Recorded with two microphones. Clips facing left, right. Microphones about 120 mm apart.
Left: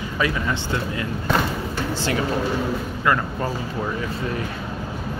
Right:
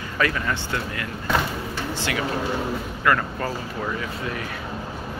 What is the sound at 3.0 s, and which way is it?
Speech, 20° left (ahead or behind).